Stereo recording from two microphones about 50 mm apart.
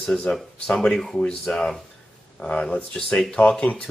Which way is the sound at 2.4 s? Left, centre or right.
Centre.